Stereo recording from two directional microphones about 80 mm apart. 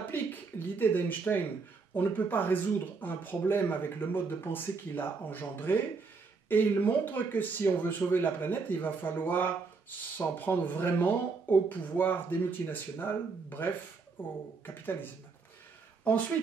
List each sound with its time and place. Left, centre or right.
0.1 s speech: left